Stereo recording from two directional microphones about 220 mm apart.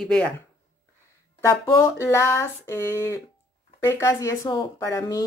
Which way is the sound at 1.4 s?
15° left (ahead or behind).